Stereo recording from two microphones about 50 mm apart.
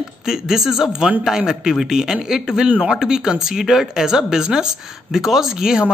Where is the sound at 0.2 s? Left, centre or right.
Centre.